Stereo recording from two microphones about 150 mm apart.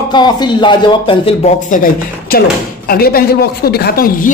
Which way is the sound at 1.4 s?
60° left (ahead or behind).